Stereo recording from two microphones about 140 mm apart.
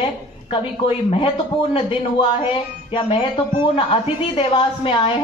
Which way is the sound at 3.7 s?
40° left (ahead or behind).